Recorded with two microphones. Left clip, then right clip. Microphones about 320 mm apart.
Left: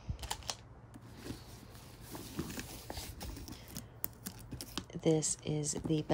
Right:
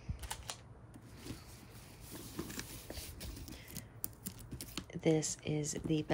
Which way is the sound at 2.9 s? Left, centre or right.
Centre.